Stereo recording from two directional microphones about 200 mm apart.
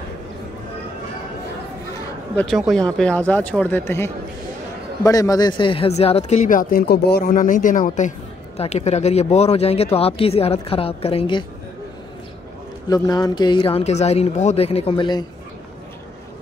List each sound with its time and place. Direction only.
2.3 s speech: centre (ahead or behind); by 11.4 s 25° left (ahead or behind)
12.9 s speech: 20° left (ahead or behind)